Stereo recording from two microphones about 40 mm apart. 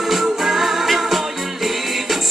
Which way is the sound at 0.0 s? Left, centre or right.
Centre.